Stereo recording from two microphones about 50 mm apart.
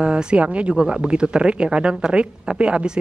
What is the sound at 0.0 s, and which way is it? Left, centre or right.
A woman's voice, centre.